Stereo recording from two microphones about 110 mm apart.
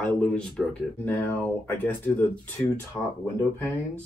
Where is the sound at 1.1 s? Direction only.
20° left (ahead or behind).